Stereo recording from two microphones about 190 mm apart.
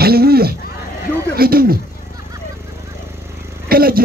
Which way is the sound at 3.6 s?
50° right (ahead or behind).